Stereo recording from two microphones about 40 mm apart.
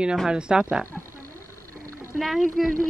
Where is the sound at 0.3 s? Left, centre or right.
Right.